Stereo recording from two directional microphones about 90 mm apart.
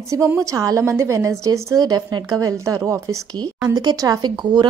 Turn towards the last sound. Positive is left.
turn(degrees=-50)  # may be behind; listen again after turning